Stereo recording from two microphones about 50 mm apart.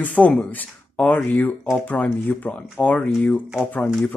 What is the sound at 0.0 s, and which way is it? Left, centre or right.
Speech, left.